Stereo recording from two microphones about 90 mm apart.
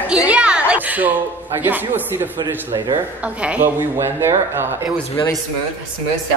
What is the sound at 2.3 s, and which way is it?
Speech, 60° right (ahead or behind).